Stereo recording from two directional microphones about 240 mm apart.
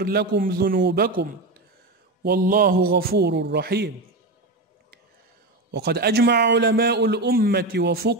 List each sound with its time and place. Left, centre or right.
0.0 s a man's voice: right
2.2 s a man's voice: right
5.7 s a man's voice: right